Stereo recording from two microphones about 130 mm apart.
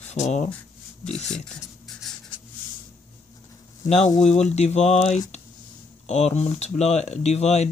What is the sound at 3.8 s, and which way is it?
Speech, 60° left (ahead or behind).